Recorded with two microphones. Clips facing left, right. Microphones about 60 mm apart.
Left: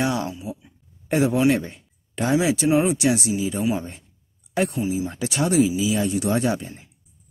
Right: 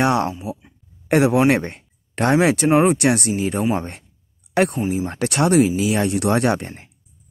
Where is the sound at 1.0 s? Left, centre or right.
Right.